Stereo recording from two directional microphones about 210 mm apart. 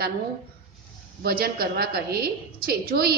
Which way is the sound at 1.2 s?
45° right (ahead or behind).